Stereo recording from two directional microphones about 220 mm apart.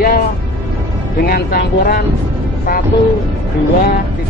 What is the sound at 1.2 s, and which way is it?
Speech, 45° left (ahead or behind).